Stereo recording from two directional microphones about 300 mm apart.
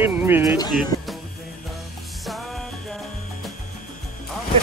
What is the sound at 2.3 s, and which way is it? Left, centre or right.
Music, centre.